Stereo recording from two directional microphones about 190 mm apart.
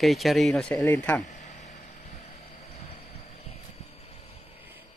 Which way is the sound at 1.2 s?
40° left (ahead or behind).